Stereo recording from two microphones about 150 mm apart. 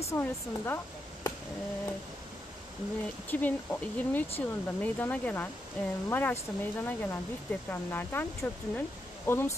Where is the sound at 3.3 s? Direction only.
10° left (ahead or behind).